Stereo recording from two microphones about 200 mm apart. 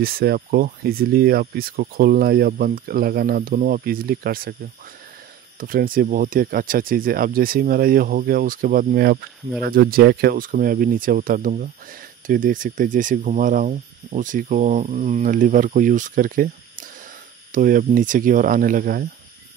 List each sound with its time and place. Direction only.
0.0 s speech: 50° right (ahead or behind)
5.6 s speech: 45° right (ahead or behind)